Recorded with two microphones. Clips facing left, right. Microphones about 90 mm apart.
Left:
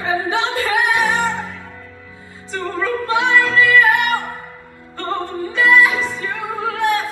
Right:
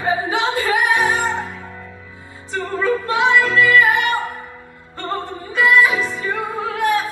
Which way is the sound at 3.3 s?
5° right (ahead or behind).